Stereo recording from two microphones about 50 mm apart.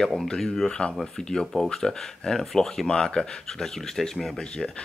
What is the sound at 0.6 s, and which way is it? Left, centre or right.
Speech, centre.